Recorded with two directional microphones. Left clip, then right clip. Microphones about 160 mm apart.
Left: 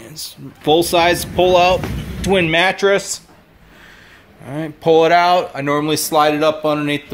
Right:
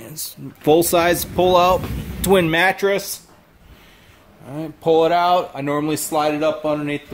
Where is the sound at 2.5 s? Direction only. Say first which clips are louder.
Left 2 dB; 30° right (ahead or behind).